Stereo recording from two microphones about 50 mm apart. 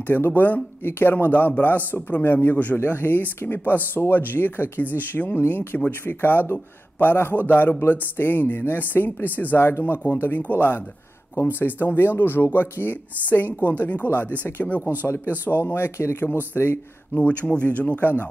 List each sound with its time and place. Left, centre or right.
0.0 s speech: left
2.8 s speech: left
9.6 s speech: left
14.8 s speech: right
15.5 s speech: left
17.2 s speech: left